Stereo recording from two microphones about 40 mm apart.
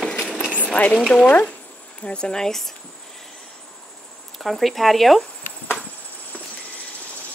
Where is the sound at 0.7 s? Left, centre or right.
Left.